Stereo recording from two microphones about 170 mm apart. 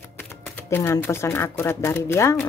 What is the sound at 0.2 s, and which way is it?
Speech, 15° left (ahead or behind).